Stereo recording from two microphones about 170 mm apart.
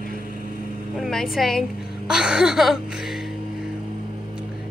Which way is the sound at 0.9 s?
Centre (ahead or behind).